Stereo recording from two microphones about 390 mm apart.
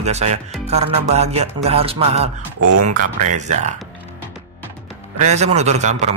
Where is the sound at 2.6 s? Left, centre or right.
Right.